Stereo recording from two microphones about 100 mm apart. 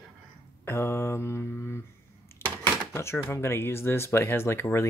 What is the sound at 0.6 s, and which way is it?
Mantra, 25° left (ahead or behind).